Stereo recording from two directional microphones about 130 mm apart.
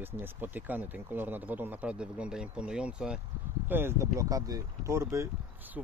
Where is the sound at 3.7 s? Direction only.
20° right (ahead or behind).